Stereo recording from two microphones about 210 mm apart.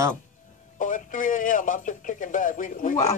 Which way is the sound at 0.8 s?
40° left (ahead or behind).